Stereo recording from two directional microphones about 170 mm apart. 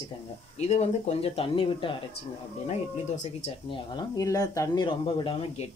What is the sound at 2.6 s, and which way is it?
Speech, 40° left (ahead or behind).